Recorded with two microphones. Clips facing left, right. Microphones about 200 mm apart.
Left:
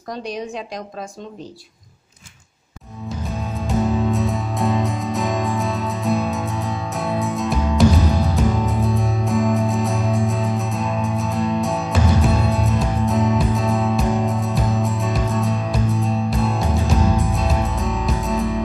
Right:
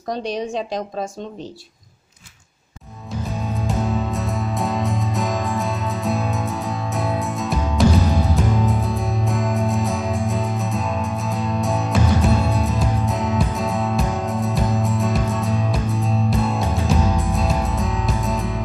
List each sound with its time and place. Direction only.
0.1 s speech: 25° right (ahead or behind)
3.4 s music: centre (ahead or behind)